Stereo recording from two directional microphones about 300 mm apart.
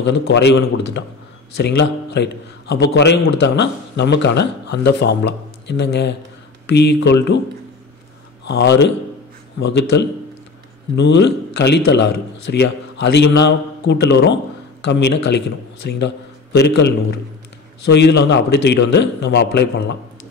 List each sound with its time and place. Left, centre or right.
0.0 s speech: left
8.5 s speech: left